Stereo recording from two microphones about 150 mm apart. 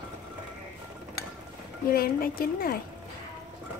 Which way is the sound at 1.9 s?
80° left.